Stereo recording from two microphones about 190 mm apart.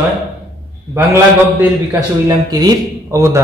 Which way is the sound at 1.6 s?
20° right (ahead or behind).